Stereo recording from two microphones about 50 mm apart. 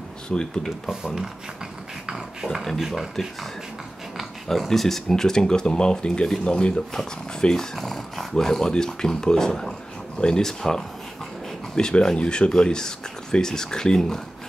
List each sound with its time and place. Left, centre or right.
0.3 s speech: centre
0.7 s speech: centre
2.8 s speech: centre
4.5 s speech: centre